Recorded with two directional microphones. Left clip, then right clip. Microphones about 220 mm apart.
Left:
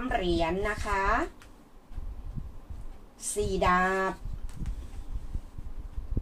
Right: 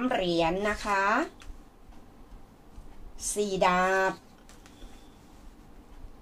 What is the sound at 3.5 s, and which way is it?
Speech, 40° right (ahead or behind).